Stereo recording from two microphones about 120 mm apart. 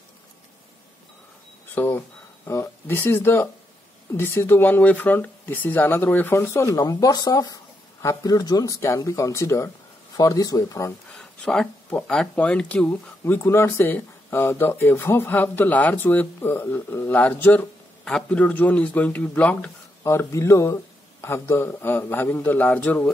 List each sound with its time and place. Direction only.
1.8 s speech: 20° left (ahead or behind)
11.1 s speech: 5° left (ahead or behind)
20.0 s speech: 25° left (ahead or behind)